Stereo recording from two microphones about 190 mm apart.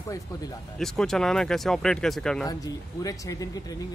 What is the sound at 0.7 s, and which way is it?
Speech, centre (ahead or behind).